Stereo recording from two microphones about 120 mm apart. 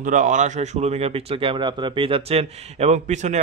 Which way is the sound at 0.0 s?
90° right.